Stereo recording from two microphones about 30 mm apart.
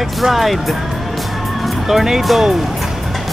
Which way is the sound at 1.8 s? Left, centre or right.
Centre.